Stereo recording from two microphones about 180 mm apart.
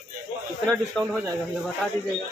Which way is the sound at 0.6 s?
5° left (ahead or behind).